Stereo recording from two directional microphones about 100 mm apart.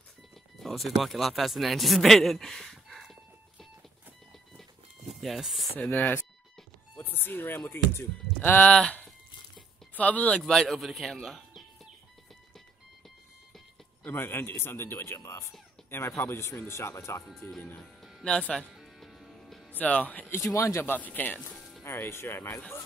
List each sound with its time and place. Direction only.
0.6 s speech: centre (ahead or behind)
5.2 s speech: centre (ahead or behind)
5.9 s speech: 20° left (ahead or behind)
8.7 s speech: 5° left (ahead or behind)
10.4 s speech: centre (ahead or behind)
14.0 s speech: 20° left (ahead or behind)
18.2 s speech: 10° left (ahead or behind)
18.8 s music: centre (ahead or behind)
19.7 s speech: 15° left (ahead or behind)
20.3 s speech: 30° left (ahead or behind)